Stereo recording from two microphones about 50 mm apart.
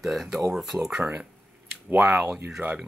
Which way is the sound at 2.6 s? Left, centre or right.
Right.